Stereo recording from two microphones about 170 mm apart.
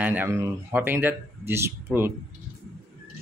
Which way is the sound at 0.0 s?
10° right (ahead or behind).